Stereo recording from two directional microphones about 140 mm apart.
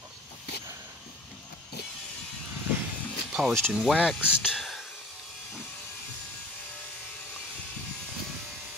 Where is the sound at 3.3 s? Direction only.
Centre (ahead or behind).